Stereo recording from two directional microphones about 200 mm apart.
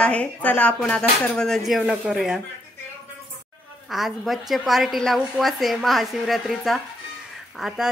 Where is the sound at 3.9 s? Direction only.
Centre (ahead or behind).